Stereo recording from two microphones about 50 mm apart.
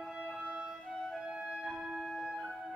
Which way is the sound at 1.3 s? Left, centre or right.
Centre.